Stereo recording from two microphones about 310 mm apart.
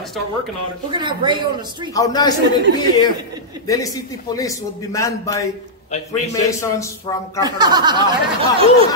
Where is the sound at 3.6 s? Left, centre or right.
Centre.